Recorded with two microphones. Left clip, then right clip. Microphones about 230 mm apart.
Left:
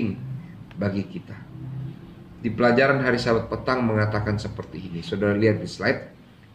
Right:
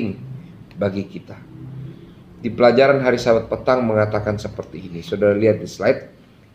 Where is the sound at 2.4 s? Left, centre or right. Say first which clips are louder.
Right 6 dB; centre.